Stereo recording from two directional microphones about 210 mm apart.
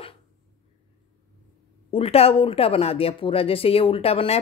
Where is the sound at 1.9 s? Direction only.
30° left (ahead or behind).